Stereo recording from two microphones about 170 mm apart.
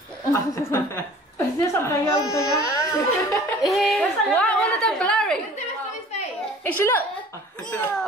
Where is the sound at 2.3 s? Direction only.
15° left (ahead or behind).